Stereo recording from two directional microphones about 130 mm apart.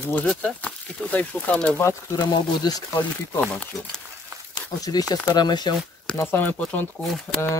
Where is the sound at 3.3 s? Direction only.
10° left (ahead or behind).